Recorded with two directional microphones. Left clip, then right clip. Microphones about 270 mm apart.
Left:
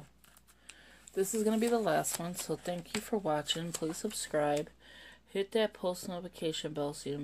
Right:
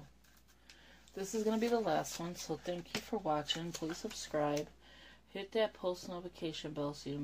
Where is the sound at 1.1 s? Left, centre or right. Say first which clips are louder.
Left 5 dB; left.